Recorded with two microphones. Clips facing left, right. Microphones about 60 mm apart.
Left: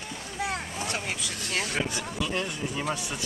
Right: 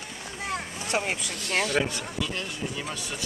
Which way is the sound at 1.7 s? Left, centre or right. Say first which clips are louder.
Right 3 dB; left.